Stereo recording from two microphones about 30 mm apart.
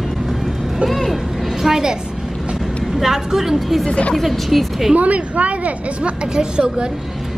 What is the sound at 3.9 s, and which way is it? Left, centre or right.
Speech, left.